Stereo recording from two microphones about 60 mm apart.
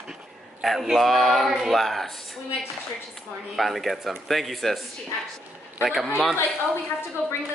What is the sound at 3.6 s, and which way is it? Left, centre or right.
A woman's voice, centre.